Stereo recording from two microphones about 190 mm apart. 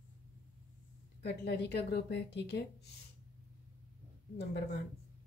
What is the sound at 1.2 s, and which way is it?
A woman's voice, 60° left (ahead or behind).